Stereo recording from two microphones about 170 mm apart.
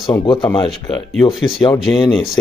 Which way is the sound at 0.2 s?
25° left (ahead or behind).